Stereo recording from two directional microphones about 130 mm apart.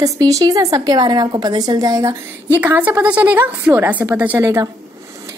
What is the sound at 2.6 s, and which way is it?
A woman's voice, 15° right (ahead or behind).